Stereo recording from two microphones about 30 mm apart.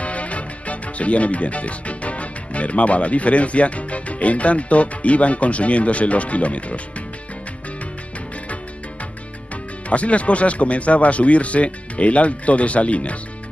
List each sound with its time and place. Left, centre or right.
0.0 s speech: left
9.8 s speech: left